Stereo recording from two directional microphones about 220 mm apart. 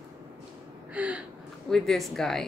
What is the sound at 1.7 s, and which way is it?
Speech, centre (ahead or behind).